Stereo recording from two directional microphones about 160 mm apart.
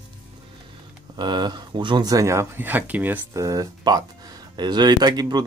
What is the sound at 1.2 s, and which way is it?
Speech, 25° right (ahead or behind).